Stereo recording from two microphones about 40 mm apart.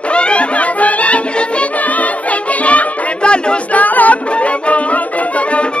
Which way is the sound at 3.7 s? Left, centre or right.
Left.